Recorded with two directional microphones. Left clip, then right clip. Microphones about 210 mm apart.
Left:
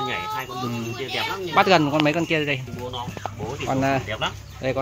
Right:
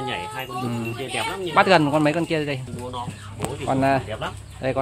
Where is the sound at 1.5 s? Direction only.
Centre (ahead or behind).